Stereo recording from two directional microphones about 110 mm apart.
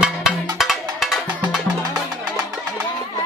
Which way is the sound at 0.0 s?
5° right (ahead or behind).